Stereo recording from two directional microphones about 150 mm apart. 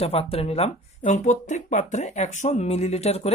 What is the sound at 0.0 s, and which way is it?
A woman's voice, 40° left (ahead or behind).